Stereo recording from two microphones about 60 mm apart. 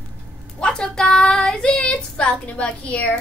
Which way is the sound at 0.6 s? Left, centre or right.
Centre.